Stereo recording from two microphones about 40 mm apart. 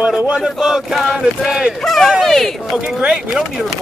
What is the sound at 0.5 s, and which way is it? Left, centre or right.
Chant, centre.